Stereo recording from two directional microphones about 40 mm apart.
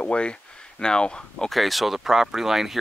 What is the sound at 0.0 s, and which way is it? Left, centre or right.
Speech, left.